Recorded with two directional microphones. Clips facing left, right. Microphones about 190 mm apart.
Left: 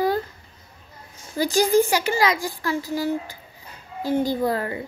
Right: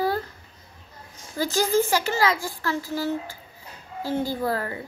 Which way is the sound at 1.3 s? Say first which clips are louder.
Left 4 dB; 15° left (ahead or behind).